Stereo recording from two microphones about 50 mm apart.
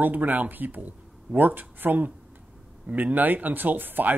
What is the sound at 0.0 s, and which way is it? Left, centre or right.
Speech, right.